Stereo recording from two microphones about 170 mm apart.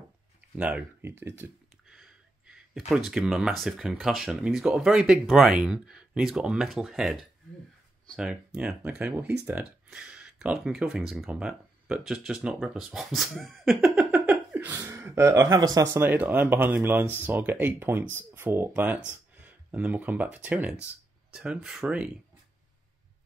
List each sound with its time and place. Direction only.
0.6 s speech: 5° right (ahead or behind)
1.9 s a sound: 5° right (ahead or behind)
2.9 s speech: centre (ahead or behind)
8.5 s speech: 5° right (ahead or behind)